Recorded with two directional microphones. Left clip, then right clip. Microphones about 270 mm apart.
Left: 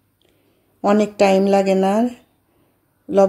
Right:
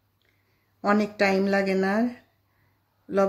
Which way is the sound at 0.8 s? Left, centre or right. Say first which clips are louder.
Left 8 dB; centre.